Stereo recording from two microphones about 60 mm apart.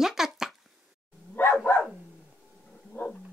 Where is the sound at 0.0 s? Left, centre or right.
Centre.